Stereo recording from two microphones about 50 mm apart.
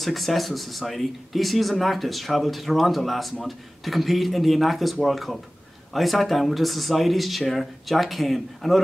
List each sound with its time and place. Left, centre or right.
0.0 s speech: centre